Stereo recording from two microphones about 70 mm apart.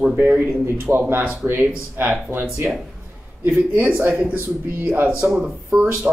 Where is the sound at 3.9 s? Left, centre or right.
Right.